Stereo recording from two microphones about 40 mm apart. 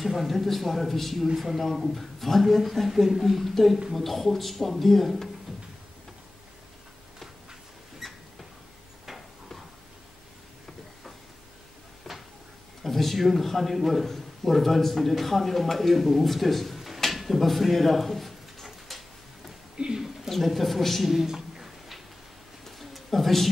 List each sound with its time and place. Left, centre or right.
0.0 s a man's voice: centre
8.0 s rodents: centre
9.0 s a sound: centre
12.1 s cupboard open or close: centre
12.8 s a man's voice: centre
17.0 s a sound: centre
19.8 s speech: right
20.2 s a sound: centre
22.7 s pigeon: centre